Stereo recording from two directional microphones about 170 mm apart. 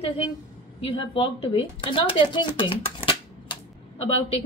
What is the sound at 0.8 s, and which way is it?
A woman's voice, 30° left (ahead or behind).